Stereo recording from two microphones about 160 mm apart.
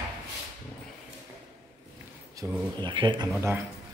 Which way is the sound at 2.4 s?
20° right (ahead or behind).